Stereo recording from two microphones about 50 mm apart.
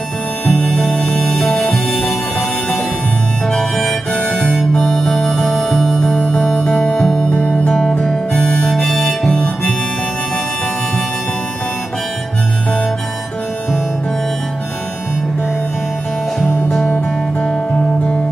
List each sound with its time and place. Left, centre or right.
0.5 s music: centre
3.4 s harmonica: centre
4.7 s music: centre
6.9 s music: centre
7.2 s music: left
8.1 s harmonica: centre
16.3 s music: centre